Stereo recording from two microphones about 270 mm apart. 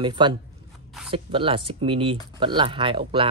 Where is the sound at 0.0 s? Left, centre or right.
Centre.